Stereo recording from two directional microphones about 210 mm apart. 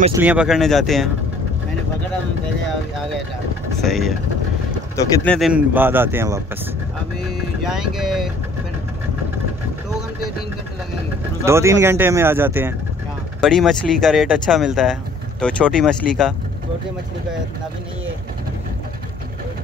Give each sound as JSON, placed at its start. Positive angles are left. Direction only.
{"t": 0.1, "sound": "speech", "side_deg": -10}
{"t": 3.8, "sound": "speech", "side_deg": 0}
{"t": 5.2, "sound": "speech", "side_deg": 5}
{"t": 5.5, "sound": "speech", "side_deg": -10}
{"t": 7.2, "sound": "speech", "side_deg": 0}
{"t": 11.4, "sound": "speech", "side_deg": -15}
{"t": 13.4, "sound": "speech", "side_deg": 0}